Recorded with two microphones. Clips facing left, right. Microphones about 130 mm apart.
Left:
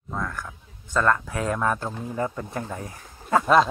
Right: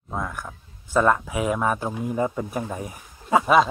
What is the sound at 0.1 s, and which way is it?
Speech, 15° right (ahead or behind).